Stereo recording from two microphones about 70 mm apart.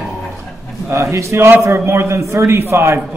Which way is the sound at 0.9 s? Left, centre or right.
Right.